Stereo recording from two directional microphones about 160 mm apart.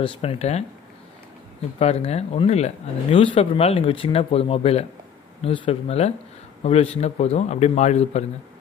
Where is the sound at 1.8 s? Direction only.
40° left (ahead or behind).